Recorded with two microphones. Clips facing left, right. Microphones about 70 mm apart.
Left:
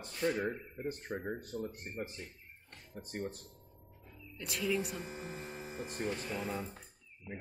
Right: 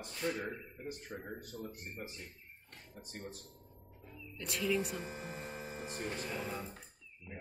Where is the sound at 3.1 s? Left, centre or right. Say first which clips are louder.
Left 7 dB; left.